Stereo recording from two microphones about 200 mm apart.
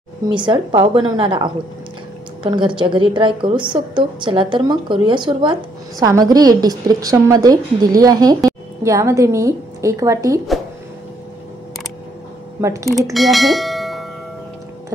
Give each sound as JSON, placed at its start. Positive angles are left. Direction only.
{"t": 0.3, "sound": "a woman's voice", "side_deg": -25}
{"t": 12.5, "sound": "speech", "side_deg": -15}
{"t": 13.1, "sound": "bell", "side_deg": 0}